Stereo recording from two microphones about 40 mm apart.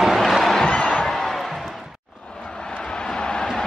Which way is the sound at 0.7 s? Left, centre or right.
Left.